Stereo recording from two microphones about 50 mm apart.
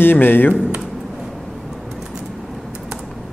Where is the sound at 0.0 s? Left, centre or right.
Left.